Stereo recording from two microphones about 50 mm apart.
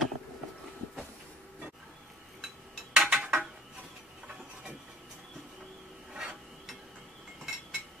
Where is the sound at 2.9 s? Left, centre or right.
Centre.